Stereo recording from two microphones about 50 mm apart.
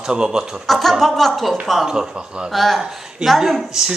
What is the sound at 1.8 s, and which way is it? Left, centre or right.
Speech, centre.